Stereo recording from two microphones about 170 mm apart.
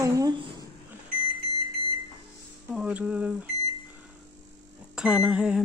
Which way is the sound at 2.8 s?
5° right (ahead or behind).